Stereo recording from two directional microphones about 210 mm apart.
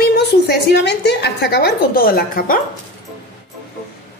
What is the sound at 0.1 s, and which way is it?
A woman's voice, 50° left (ahead or behind).